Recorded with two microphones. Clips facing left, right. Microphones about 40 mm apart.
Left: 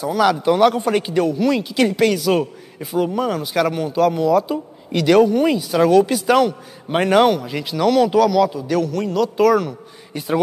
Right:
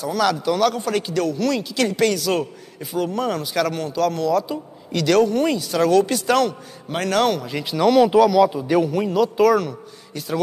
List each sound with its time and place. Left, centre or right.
0.0 s a man's voice: centre
6.9 s speech: left; by 9.8 s centre
10.1 s a man's voice: left